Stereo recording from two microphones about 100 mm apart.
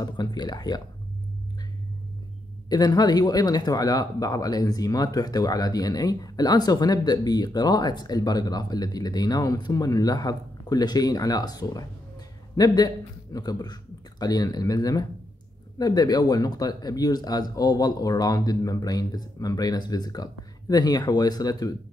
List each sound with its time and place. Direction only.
0.0 s speech: 45° left (ahead or behind)
2.7 s speech: 40° left (ahead or behind)